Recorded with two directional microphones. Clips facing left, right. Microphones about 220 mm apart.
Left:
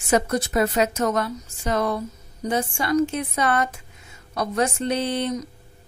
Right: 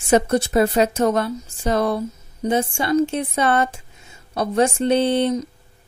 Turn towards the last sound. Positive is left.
turn(degrees=-25)  # may be behind; listen again after turning